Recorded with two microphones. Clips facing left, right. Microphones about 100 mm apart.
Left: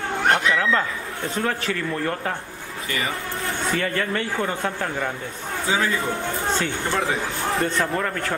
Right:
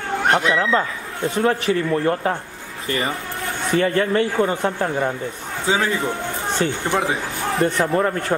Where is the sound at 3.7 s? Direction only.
25° right (ahead or behind).